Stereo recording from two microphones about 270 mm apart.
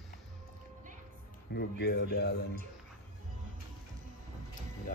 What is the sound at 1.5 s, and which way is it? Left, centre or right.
Speech, left.